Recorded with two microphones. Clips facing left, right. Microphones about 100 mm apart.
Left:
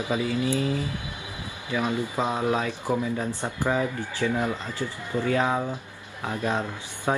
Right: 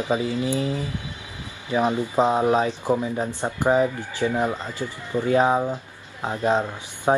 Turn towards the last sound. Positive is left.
turn(degrees=-20)  # may be behind; listen again after turning